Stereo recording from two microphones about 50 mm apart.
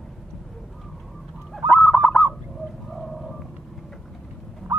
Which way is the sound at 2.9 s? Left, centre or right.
Centre.